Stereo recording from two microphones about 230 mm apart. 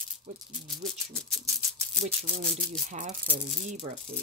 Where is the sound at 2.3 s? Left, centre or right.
Right.